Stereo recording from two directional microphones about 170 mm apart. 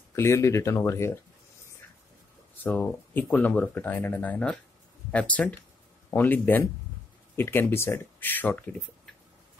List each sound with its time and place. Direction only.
0.1 s speech: 15° left (ahead or behind)
2.6 s speech: 10° left (ahead or behind)